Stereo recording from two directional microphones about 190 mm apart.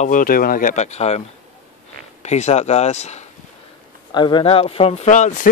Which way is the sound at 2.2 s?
35° left (ahead or behind).